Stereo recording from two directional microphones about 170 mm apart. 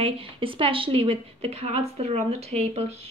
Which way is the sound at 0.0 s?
30° right (ahead or behind).